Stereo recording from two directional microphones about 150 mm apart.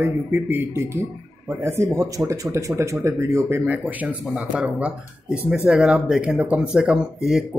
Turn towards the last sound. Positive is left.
turn(degrees=-5)  # may be behind; listen again after turning